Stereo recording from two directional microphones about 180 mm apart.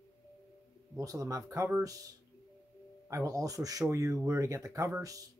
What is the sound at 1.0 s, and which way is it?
Speech, 20° right (ahead or behind).